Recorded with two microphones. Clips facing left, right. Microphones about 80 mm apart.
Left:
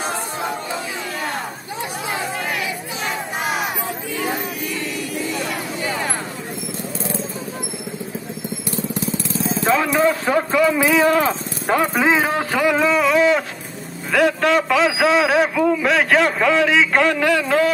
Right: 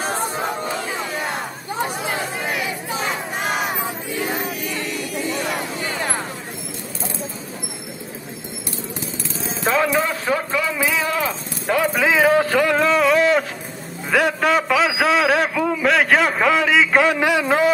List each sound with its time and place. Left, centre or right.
9.9 s speech: centre
11.0 s speech: left; by 12.7 s centre
12.7 s a man's voice: centre
17.2 s speech: centre